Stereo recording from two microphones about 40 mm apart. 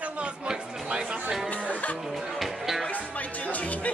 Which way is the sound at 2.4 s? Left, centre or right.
Centre.